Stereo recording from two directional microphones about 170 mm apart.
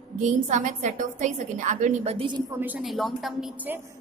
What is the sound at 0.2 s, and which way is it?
A woman's voice, 45° right (ahead or behind).